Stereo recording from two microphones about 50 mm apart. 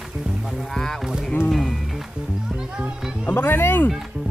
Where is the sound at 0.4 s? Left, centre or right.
Centre.